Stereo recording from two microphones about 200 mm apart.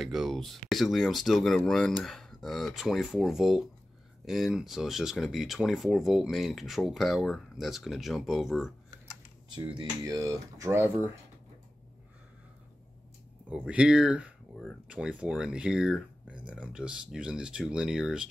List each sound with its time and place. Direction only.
0.0 s speech: centre (ahead or behind)
9.7 s speech: 20° right (ahead or behind)
13.5 s speech: 5° right (ahead or behind)